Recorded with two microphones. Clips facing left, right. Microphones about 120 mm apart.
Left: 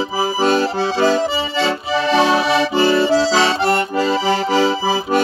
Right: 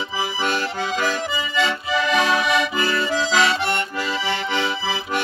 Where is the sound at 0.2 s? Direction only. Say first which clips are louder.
Left 8 dB; 35° left (ahead or behind).